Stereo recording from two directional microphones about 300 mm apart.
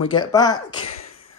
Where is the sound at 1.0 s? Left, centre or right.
Left.